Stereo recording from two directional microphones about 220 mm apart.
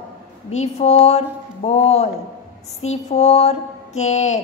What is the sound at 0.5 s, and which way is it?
Speech, 30° left (ahead or behind).